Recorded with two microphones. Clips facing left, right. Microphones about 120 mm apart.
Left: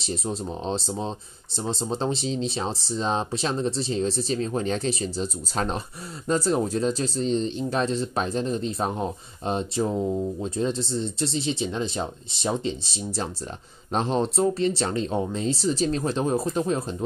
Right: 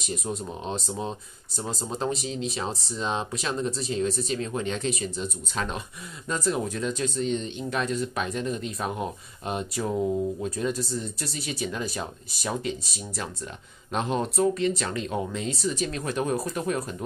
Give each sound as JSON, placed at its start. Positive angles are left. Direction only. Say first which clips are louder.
{"t": 0.0, "sound": "speech", "louder": "left 2 dB", "side_deg": 30}